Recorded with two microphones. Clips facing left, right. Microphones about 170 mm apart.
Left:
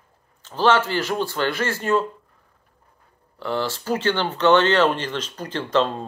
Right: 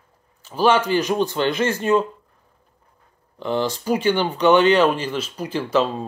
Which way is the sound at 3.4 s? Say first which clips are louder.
Right 3 dB; 15° right (ahead or behind).